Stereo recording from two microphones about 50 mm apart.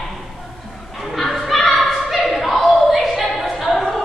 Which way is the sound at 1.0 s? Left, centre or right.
Centre.